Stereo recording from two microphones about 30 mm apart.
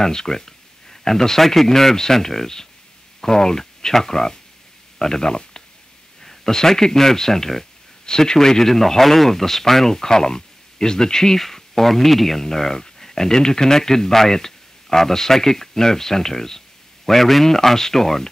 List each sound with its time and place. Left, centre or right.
0.0 s speech: centre
12.4 s speech: centre